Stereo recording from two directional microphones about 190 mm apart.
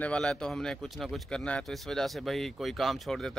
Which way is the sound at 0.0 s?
5° left (ahead or behind).